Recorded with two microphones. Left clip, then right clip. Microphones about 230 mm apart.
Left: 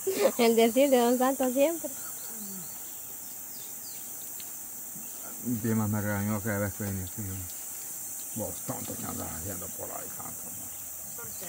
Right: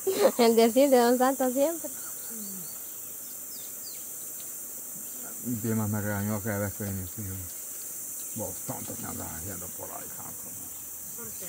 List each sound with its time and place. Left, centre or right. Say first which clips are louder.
0.1 s speech: right 2 dB; centre
5.7 s speech: even; centre
8.4 s speech: left 1 dB; centre